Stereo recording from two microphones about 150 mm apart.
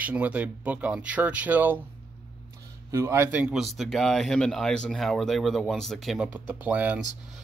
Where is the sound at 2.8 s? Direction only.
15° right (ahead or behind).